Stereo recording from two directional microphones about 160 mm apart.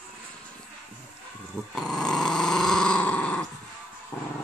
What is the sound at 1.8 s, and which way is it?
Growling, 5° left (ahead or behind).